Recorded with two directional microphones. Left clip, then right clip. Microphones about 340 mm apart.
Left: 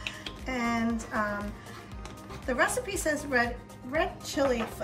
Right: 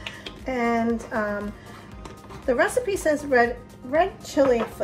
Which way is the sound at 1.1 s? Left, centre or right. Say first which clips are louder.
Right 4 dB; centre.